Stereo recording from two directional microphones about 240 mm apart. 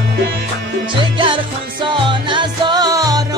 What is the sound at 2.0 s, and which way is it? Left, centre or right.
Music, centre.